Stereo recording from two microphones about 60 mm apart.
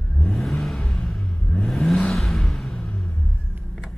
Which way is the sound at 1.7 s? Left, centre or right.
Centre.